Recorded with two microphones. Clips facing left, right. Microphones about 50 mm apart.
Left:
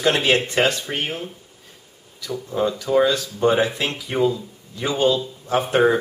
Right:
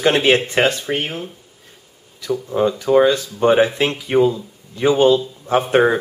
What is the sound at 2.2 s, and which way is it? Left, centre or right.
Speech, centre.